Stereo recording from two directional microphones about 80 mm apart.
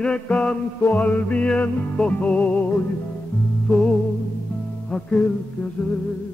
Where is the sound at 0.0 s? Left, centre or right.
Centre.